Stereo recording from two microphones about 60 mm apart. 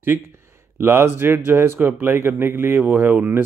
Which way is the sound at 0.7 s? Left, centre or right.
Right.